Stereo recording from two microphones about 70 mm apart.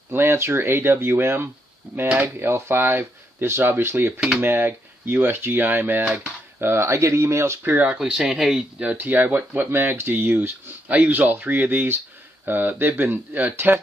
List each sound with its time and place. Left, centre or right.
0.1 s speech: right
6.0 s speech: centre
6.6 s speech: right
7.6 s speech: right
8.0 s speech: centre
8.9 s speech: right